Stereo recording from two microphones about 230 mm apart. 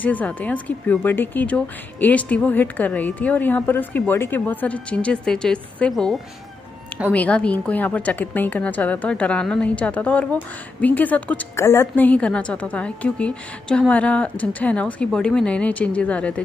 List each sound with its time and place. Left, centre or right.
0.0 s a woman's voice: centre